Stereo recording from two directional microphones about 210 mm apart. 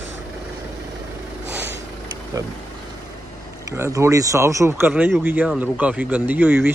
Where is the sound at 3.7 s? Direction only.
15° right (ahead or behind).